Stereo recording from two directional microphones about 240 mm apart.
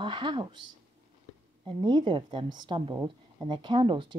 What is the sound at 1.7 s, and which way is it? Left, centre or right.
A woman's voice, centre.